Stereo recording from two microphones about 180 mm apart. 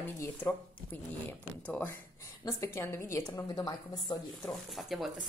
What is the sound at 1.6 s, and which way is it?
A woman's voice, 10° left (ahead or behind).